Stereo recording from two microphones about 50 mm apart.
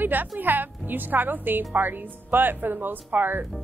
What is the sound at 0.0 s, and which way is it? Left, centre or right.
A woman's voice, right.